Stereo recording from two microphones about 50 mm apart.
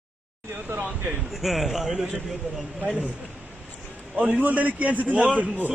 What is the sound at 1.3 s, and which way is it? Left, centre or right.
Speech, centre.